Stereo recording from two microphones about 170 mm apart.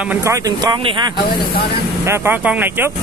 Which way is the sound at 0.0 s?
10° right (ahead or behind).